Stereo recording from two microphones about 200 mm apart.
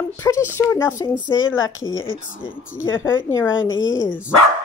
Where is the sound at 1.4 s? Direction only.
80° left.